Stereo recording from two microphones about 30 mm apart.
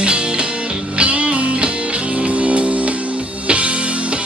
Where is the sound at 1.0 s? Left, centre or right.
Right.